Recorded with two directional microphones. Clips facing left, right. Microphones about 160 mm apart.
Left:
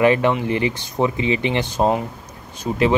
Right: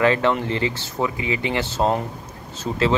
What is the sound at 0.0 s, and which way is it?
Speech, 15° left (ahead or behind).